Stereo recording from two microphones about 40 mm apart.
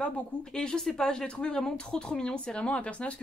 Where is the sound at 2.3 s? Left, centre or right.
Left.